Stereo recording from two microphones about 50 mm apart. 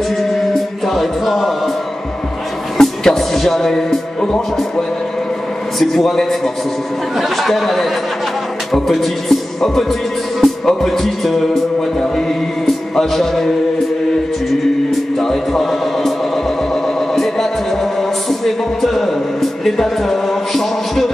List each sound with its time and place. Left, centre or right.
0.8 s music: centre
2.8 s music: centre
5.8 s a sound: centre
10.4 s speech: centre
12.6 s music: centre
14.9 s music: centre
17.1 s a sound: centre